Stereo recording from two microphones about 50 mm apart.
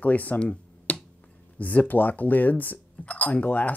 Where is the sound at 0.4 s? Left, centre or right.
Left.